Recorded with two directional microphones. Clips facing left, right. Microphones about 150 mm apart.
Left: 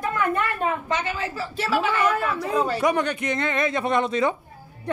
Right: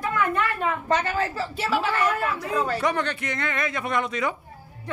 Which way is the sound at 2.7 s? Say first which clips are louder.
Left 3 dB; 15° left (ahead or behind).